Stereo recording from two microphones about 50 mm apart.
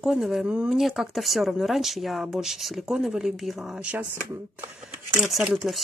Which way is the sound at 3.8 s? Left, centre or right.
Right.